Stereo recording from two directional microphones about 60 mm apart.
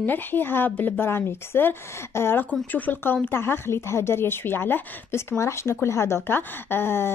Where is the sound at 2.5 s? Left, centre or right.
Left.